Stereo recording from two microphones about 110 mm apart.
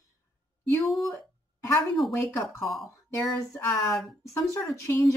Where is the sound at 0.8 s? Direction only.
Centre (ahead or behind).